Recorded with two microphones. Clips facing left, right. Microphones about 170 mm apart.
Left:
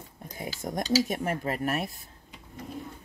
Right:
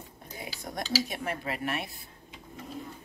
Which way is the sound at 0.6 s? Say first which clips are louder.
Left 6 dB; 45° left (ahead or behind).